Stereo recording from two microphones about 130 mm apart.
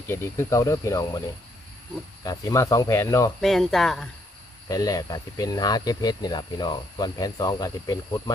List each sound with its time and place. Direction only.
0.1 s speech: 20° left (ahead or behind)
2.2 s speech: 25° left (ahead or behind)
3.3 s speech: centre (ahead or behind)
4.6 s speech: 30° left (ahead or behind)